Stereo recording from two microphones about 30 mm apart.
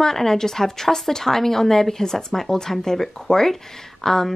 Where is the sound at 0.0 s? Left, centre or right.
Centre.